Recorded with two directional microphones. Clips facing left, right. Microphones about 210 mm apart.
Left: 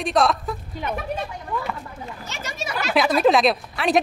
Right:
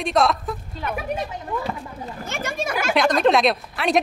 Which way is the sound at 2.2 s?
55° right (ahead or behind).